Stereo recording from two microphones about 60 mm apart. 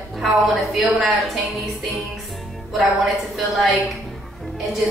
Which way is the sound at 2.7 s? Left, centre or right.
Centre.